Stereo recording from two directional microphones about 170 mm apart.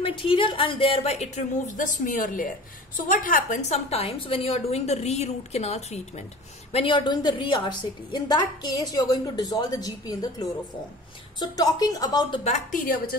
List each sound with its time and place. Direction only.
0.0 s a woman's voice: 30° left (ahead or behind)
12.4 s a woman's voice: 45° left (ahead or behind)